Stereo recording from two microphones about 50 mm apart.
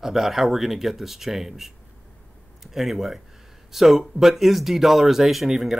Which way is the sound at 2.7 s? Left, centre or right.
Centre.